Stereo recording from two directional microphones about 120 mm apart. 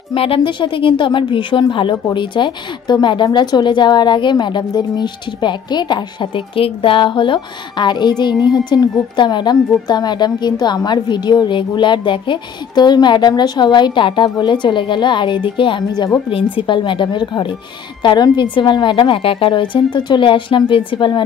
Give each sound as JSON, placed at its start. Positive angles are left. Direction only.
{"t": 0.1, "sound": "a woman's voice", "side_deg": 50}